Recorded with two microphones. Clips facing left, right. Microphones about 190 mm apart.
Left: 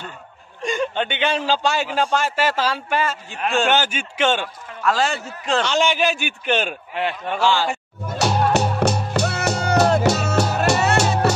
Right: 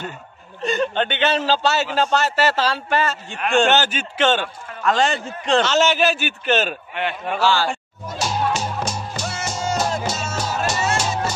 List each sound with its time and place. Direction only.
0.6 s a man's voice: 10° left (ahead or behind)
8.1 s music: 65° left (ahead or behind)